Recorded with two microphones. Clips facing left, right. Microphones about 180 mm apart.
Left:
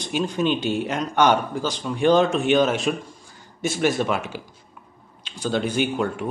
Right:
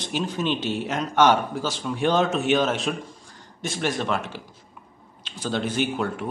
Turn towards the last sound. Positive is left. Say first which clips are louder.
# left 2 dB
turn(degrees=0)  # may be behind; listen again after turning